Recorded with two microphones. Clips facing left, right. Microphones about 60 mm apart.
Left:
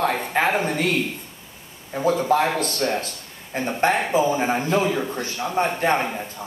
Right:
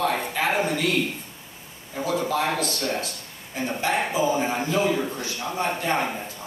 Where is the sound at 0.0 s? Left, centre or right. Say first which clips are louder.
Left 3 dB; left.